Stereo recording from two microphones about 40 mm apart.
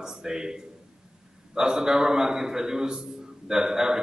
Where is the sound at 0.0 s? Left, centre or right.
Centre.